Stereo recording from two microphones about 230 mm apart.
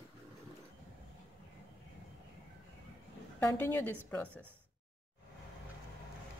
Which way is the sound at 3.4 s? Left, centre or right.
Centre.